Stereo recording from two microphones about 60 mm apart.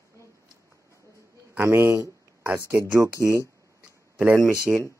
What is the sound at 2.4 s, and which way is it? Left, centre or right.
Speech, right.